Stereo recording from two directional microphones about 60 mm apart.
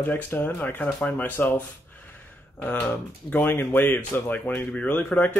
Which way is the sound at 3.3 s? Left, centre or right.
Left.